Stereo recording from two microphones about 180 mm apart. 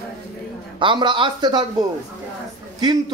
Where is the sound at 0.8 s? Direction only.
25° right (ahead or behind).